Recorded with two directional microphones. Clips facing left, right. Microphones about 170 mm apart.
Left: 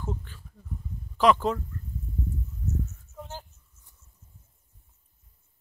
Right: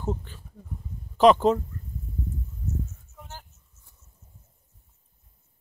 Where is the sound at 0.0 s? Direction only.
25° right (ahead or behind).